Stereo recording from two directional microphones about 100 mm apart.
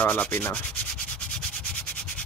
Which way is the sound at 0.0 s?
15° left (ahead or behind).